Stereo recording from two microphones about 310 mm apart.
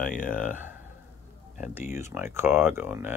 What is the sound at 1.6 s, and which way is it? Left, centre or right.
Speech, centre.